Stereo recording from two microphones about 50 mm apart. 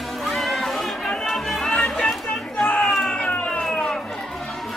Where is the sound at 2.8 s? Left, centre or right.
Centre.